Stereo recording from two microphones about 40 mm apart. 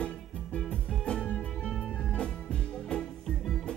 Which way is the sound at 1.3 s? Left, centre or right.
Left.